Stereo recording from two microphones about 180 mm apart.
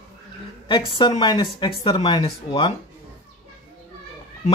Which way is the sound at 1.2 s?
25° left (ahead or behind).